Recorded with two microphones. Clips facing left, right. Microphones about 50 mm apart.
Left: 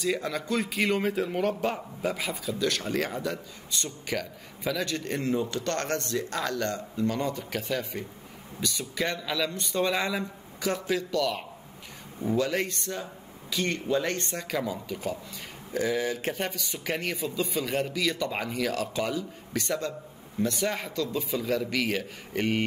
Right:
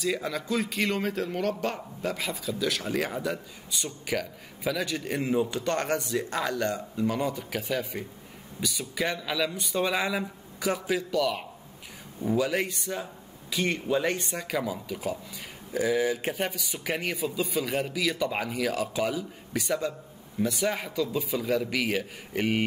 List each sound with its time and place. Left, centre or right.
0.0 s a man's voice: centre